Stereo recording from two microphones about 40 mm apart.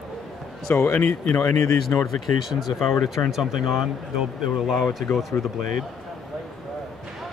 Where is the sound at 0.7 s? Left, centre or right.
Left.